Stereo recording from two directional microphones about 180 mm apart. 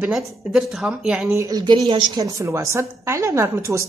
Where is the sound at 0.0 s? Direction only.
Centre (ahead or behind).